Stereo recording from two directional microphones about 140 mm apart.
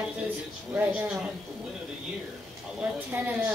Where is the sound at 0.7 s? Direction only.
10° right (ahead or behind).